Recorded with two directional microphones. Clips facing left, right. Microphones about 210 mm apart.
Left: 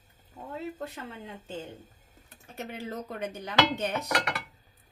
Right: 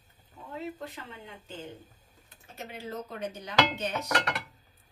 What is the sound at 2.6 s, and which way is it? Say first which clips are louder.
A woman's voice: left 2 dB; 55° left (ahead or behind).